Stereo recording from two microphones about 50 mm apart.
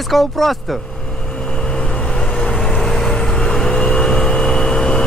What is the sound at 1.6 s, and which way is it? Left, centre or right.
Vehicle, centre.